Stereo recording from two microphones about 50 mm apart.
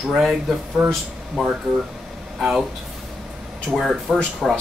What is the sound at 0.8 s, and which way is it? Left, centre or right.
Speech, right.